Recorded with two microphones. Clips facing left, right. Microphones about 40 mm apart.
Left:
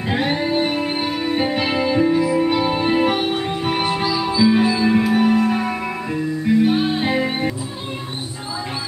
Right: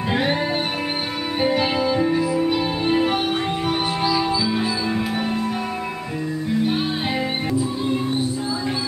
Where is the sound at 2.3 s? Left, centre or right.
Left.